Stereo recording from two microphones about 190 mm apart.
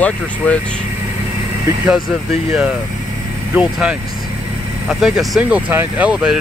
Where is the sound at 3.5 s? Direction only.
5° right (ahead or behind).